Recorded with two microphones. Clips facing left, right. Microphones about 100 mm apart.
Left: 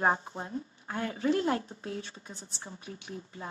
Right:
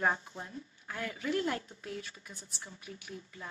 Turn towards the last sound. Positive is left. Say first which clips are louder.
# left 4 dB
turn(degrees=30)  # may be behind; listen again after turning